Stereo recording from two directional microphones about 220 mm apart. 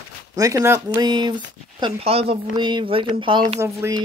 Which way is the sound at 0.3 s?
15° right (ahead or behind).